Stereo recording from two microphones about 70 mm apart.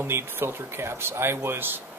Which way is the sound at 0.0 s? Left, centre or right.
Right.